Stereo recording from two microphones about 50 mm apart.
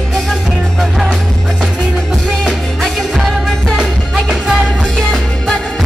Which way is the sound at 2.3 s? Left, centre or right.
Centre.